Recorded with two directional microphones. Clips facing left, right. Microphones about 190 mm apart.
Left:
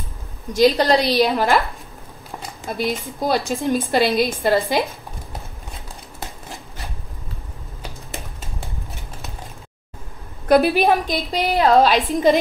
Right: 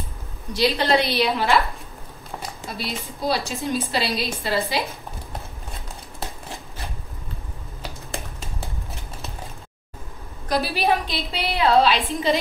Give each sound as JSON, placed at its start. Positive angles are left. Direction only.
{"t": 0.5, "sound": "a woman's voice", "side_deg": 45}
{"t": 2.6, "sound": "a woman's voice", "side_deg": 50}
{"t": 10.5, "sound": "a woman's voice", "side_deg": 55}